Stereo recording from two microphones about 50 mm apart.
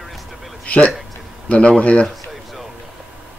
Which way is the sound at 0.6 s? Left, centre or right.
Left.